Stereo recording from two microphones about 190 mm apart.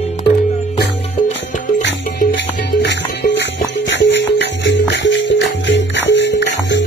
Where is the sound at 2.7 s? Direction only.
65° left (ahead or behind).